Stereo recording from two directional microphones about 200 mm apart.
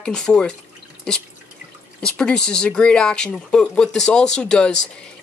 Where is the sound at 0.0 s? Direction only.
5° left (ahead or behind).